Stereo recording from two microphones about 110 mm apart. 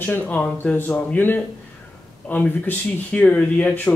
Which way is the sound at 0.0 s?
15° left (ahead or behind).